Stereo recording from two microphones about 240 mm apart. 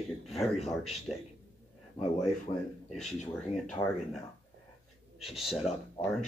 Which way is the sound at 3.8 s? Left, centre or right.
Centre.